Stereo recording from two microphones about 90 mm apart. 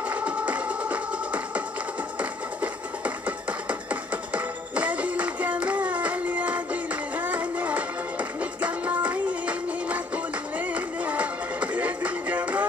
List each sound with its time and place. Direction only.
0.1 s music: 15° right (ahead or behind)